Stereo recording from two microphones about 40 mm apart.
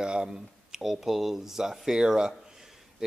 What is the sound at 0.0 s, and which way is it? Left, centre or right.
Speech, right.